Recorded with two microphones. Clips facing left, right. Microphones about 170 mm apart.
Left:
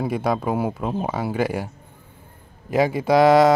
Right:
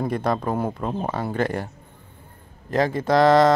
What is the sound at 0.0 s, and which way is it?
Speech, 5° left (ahead or behind).